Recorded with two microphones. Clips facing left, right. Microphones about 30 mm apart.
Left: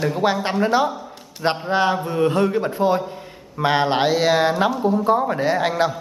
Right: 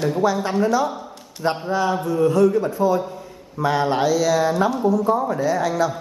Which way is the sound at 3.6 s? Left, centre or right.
Left.